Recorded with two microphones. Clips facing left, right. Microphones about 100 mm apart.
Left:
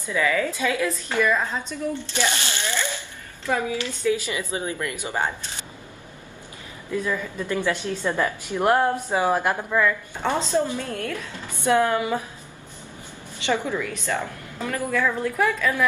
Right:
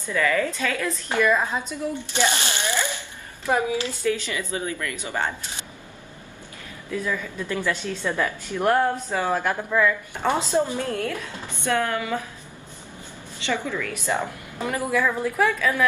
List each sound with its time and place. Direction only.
0.0 s a woman's voice: 10° left (ahead or behind)
1.1 s a woman's voice: 15° right (ahead or behind)
4.1 s a woman's voice: 15° left (ahead or behind)
7.1 s a woman's voice: 10° left (ahead or behind)
9.8 s a woman's voice: 15° right (ahead or behind)
11.6 s a woman's voice: 20° left (ahead or behind)
13.5 s a woman's voice: 20° left (ahead or behind)
14.0 s a woman's voice: 20° right (ahead or behind)
15.0 s speech: 5° right (ahead or behind)